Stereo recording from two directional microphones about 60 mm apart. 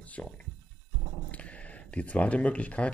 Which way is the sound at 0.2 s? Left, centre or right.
Centre.